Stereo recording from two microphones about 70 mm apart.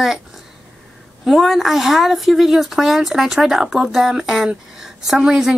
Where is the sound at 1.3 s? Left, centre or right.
Centre.